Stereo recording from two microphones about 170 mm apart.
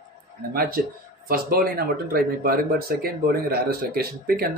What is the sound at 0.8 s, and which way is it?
Speech, 60° right (ahead or behind).